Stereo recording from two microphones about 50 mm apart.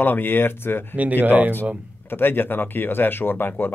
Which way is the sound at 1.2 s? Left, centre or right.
Right.